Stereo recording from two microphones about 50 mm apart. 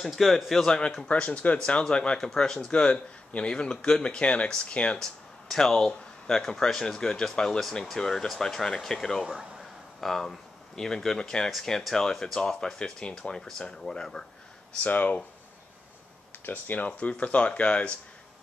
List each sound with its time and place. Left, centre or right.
0.0 s speech: centre
0.7 s speech: centre
4.9 s speech: centre
14.8 s speech: left
16.4 s speech: left